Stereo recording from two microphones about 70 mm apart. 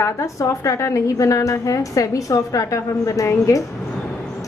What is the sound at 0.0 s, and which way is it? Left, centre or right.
A woman's voice, left.